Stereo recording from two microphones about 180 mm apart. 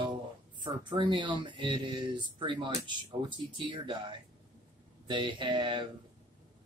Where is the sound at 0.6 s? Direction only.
25° right (ahead or behind).